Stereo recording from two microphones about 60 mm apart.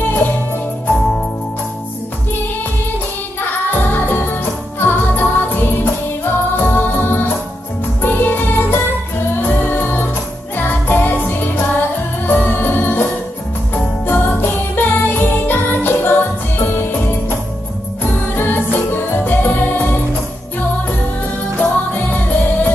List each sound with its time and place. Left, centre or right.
3.3 s music: left
18.3 s music: left
21.5 s music: left